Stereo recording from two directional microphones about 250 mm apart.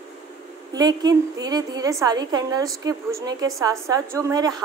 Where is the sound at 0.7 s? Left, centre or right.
Centre.